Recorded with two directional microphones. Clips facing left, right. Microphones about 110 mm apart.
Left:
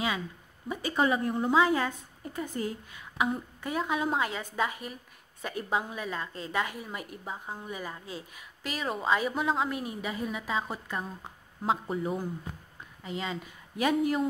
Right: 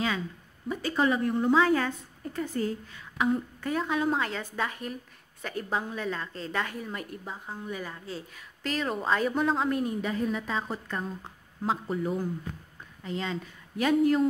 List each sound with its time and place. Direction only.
0.7 s a woman's voice: 15° left (ahead or behind)